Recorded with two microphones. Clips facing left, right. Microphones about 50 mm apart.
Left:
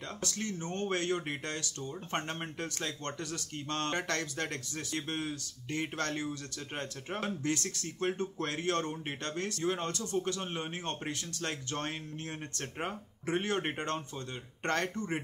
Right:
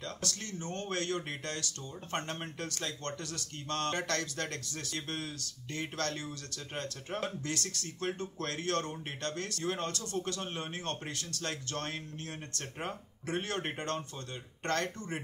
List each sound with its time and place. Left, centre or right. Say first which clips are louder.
0.2 s speech: left 3 dB; left